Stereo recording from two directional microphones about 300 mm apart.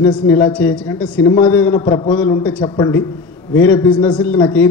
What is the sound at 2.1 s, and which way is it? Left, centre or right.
A woman's voice, centre.